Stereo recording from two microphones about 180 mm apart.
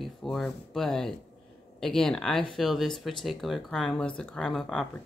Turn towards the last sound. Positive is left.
turn(degrees=0)  # may be behind; listen again after turning